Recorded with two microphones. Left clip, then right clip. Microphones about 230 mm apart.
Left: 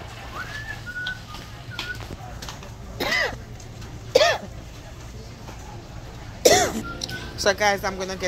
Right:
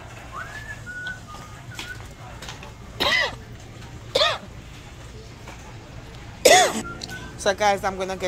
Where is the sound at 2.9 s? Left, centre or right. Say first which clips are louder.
Right 2 dB; centre.